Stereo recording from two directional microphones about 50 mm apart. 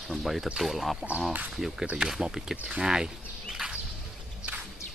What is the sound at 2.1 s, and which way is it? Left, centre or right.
Speech, centre.